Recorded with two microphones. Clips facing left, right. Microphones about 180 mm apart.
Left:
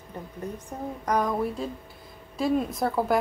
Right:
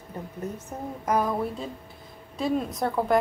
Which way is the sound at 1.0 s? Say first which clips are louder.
Even; 5° right (ahead or behind).